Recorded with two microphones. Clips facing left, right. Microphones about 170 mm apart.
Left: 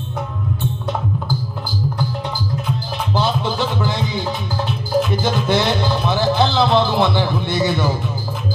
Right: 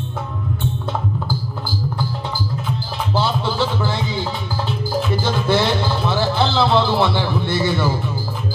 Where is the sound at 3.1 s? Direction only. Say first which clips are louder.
Left 1 dB; 15° left (ahead or behind).